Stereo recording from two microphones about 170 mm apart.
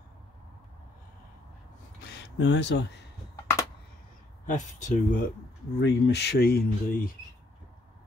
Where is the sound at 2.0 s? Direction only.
85° left.